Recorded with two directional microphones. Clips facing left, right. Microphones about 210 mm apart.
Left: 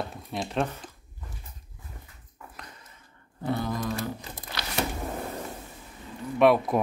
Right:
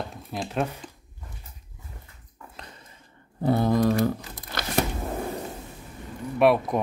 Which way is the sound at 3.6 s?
60° right (ahead or behind).